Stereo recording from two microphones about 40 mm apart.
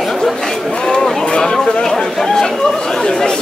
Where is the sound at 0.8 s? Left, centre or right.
Centre.